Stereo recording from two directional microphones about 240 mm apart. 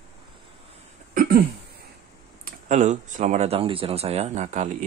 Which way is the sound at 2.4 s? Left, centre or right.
Right.